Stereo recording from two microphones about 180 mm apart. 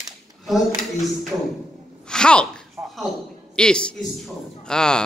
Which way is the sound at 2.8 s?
15° right (ahead or behind).